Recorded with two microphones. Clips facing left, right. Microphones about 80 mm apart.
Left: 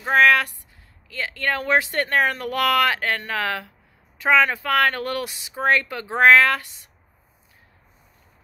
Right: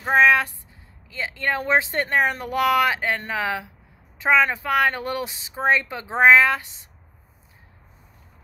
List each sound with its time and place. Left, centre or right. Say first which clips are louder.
0.1 s speech: even; right